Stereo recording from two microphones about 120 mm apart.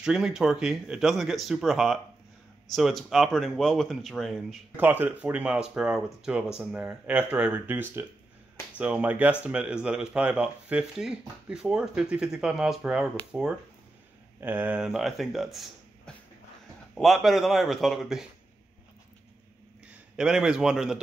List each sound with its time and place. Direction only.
0.0 s speech: 5° right (ahead or behind)
4.7 s speech: 15° right (ahead or behind)
14.4 s speech: 15° right (ahead or behind)
16.1 s a sound: 5° left (ahead or behind)
16.9 s speech: centre (ahead or behind)
19.9 s a man's voice: 5° right (ahead or behind)